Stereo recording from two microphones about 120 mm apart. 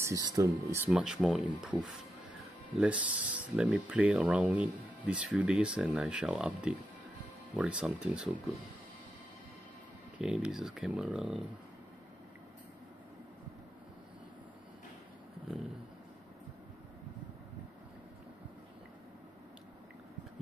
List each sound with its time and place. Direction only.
0.0 s speech: 30° right (ahead or behind)
0.8 s speech: 5° right (ahead or behind)
10.1 s speech: 10° right (ahead or behind)